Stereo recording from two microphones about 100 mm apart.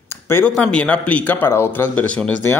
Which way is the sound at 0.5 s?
10° left (ahead or behind).